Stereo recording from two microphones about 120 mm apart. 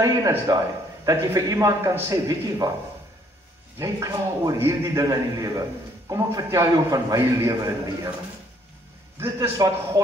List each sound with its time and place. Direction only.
0.5 s a man's voice: 35° right (ahead or behind)
1.0 s a man's voice: 25° right (ahead or behind)
3.7 s a man's voice: 25° right (ahead or behind)
9.2 s a man's voice: 25° right (ahead or behind)